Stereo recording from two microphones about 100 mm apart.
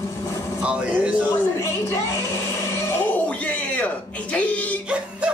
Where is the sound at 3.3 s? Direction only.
15° left (ahead or behind).